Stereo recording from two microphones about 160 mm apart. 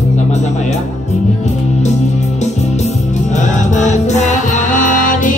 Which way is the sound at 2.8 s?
45° left (ahead or behind).